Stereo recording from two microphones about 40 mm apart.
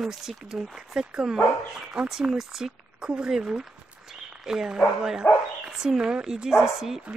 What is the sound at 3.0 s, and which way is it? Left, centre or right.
Speech, right.